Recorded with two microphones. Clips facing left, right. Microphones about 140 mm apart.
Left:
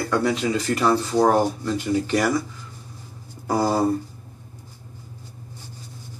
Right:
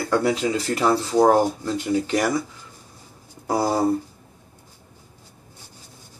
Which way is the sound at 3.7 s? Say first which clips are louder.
Right 1 dB; 10° right (ahead or behind).